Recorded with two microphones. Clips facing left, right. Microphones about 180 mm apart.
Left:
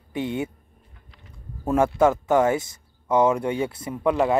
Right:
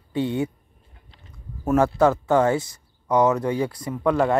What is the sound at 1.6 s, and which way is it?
Speech, 25° left (ahead or behind).